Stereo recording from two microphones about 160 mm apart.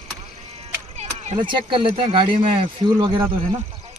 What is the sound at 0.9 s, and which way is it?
Chop, 45° right (ahead or behind).